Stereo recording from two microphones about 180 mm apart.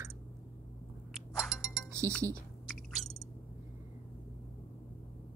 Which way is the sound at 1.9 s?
15° right (ahead or behind).